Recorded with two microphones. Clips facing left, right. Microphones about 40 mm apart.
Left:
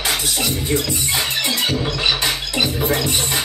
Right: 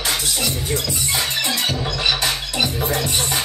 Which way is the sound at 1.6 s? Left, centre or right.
Left.